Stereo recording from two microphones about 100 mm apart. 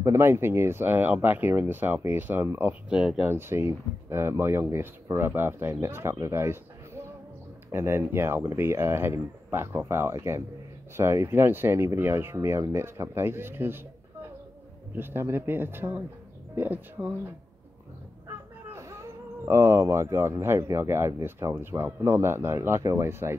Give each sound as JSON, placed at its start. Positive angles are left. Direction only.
{"t": 0.0, "sound": "speech", "side_deg": -25}
{"t": 2.9, "sound": "speech", "side_deg": -10}
{"t": 3.3, "sound": "speech", "side_deg": -25}
{"t": 15.0, "sound": "speech", "side_deg": -20}
{"t": 18.7, "sound": "speech", "side_deg": -30}